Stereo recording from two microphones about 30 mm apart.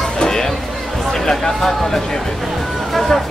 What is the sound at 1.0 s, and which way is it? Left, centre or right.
Speech, centre.